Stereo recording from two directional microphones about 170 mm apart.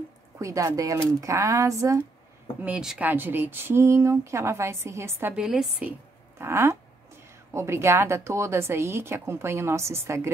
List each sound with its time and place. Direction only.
0.4 s speech: 20° right (ahead or behind)
2.6 s speech: 5° right (ahead or behind)